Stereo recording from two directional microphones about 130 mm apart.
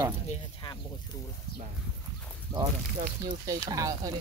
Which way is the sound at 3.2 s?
30° right (ahead or behind).